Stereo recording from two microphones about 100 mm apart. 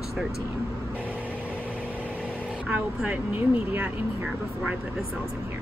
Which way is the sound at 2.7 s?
10° right (ahead or behind).